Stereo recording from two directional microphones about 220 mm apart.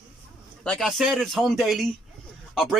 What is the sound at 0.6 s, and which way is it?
Speech, centre (ahead or behind).